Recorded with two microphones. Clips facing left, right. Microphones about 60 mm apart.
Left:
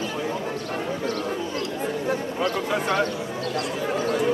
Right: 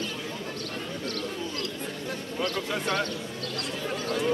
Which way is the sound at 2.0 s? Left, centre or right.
Left.